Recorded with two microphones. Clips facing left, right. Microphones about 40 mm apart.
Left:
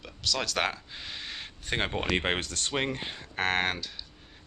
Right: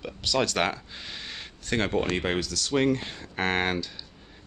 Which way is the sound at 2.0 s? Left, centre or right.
Left.